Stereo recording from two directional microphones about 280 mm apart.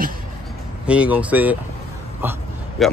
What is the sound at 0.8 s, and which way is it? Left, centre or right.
Speech, centre.